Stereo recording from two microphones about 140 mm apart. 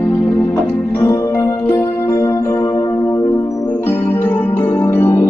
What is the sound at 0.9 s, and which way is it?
Music, 20° left (ahead or behind).